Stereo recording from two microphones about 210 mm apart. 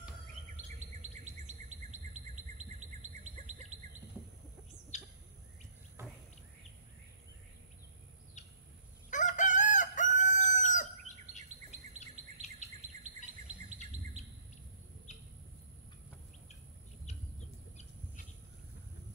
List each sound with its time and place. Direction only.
1.0 s chirp: 35° right (ahead or behind)
4.9 s bird: 35° left (ahead or behind)
9.1 s chicken: 35° left (ahead or behind)
12.0 s bird: 35° left (ahead or behind)
13.9 s chirp: 35° right (ahead or behind)
15.1 s a sound: 35° left (ahead or behind)